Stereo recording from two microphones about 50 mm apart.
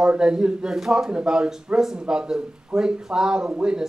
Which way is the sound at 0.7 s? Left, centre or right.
Centre.